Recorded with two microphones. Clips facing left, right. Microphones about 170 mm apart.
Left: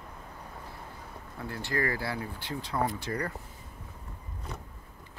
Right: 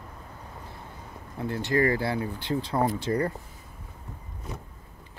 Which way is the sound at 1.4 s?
20° right (ahead or behind).